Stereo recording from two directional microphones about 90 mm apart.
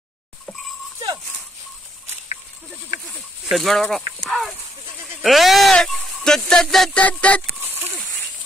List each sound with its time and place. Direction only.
3.4 s speech: centre (ahead or behind)
7.0 s speech: 15° left (ahead or behind)
7.6 s a sound: 25° right (ahead or behind)